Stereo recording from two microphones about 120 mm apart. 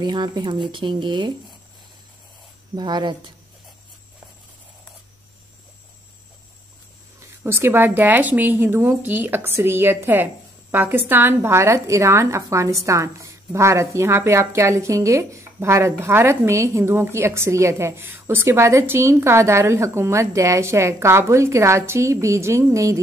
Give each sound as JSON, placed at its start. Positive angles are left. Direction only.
{"t": 0.0, "sound": "speech", "side_deg": -35}
{"t": 2.7, "sound": "speech", "side_deg": -35}
{"t": 7.2, "sound": "a woman's voice", "side_deg": -20}